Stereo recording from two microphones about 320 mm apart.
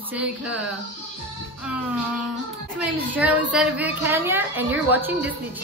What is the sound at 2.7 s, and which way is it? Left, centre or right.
A woman's voice, centre.